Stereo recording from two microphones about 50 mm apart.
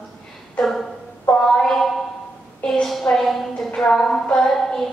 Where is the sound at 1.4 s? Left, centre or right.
Centre.